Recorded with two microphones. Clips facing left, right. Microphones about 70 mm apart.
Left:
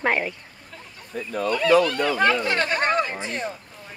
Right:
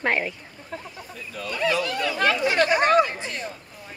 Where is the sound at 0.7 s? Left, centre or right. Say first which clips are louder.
Right 9 dB; right.